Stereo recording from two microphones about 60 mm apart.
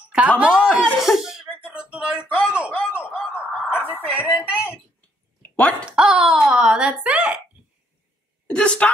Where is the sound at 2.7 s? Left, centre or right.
Left.